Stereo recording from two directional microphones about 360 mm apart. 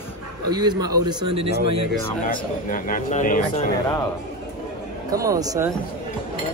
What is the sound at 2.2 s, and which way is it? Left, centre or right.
Speech, left.